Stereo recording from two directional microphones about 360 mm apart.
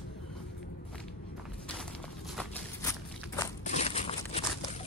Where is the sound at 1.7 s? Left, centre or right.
Centre.